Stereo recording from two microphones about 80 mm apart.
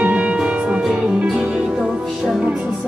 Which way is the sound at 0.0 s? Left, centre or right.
Centre.